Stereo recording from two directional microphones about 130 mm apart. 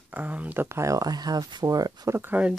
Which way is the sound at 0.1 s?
10° right (ahead or behind).